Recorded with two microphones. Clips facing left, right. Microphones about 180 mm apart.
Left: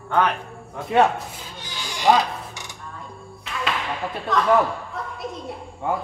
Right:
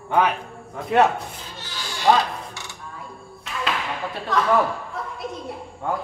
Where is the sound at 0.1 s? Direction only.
5° right (ahead or behind).